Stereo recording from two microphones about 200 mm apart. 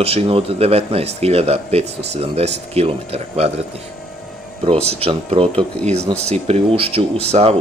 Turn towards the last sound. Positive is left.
turn(degrees=-30)  # may be behind; listen again after turning